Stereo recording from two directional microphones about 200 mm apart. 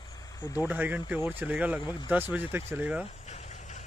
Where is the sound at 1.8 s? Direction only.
20° left (ahead or behind).